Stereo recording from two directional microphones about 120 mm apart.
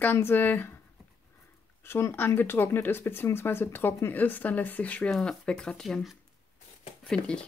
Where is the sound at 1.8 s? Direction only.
20° left (ahead or behind).